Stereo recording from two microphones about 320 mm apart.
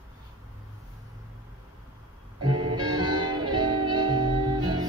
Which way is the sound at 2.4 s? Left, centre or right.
Right.